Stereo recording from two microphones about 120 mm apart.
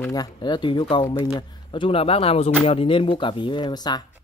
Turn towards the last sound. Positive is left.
turn(degrees=35)  # may be behind; listen again after turning